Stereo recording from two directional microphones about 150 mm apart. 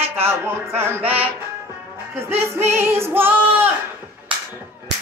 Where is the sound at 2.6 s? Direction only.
15° right (ahead or behind).